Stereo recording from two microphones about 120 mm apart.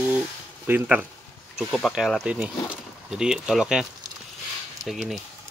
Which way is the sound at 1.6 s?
Centre (ahead or behind).